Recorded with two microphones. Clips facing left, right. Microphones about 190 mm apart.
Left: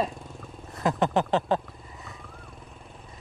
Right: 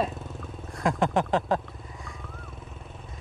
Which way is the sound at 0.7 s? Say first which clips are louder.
Even; centre (ahead or behind).